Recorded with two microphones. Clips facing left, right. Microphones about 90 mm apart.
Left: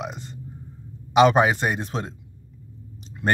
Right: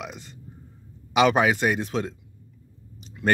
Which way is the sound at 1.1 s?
35° left (ahead or behind).